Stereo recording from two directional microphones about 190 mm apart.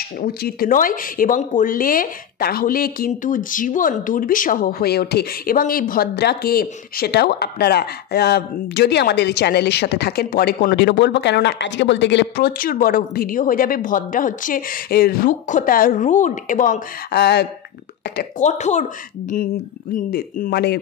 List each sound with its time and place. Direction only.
0.2 s speech: 50° left (ahead or behind)
18.4 s speech: 40° left (ahead or behind)
20.1 s speech: 50° left (ahead or behind)